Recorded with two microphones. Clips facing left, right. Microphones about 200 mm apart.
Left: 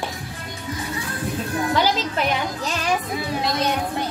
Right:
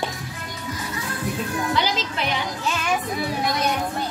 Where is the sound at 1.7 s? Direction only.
40° left (ahead or behind).